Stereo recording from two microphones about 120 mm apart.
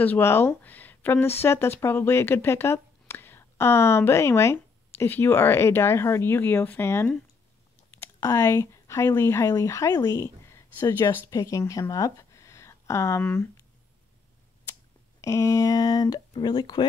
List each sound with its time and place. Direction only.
0.0 s speech: 15° left (ahead or behind)
8.2 s speech: 25° left (ahead or behind)
11.9 s a sound: 25° left (ahead or behind)
14.7 s speech: 25° left (ahead or behind)